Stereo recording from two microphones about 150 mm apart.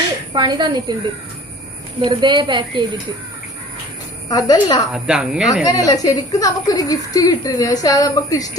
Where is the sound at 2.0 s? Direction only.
30° right (ahead or behind).